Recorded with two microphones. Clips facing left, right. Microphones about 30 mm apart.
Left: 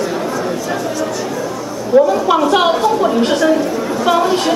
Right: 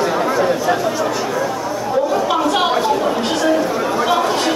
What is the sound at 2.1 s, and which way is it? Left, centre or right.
A woman's voice, centre.